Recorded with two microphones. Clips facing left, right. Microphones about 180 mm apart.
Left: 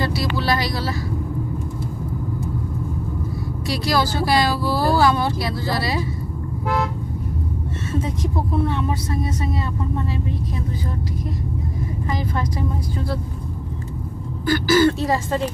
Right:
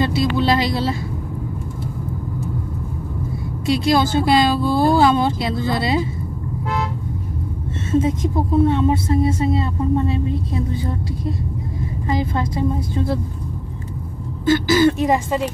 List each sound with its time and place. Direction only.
0.0 s music: 20° right (ahead or behind)
3.6 s speech: 25° right (ahead or behind)
7.9 s speech: 25° right (ahead or behind)
12.1 s speech: 25° right (ahead or behind)
14.4 s speech: 20° right (ahead or behind)